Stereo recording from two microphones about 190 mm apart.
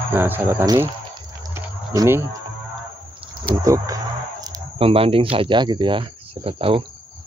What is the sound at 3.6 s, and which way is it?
Music, 15° right (ahead or behind).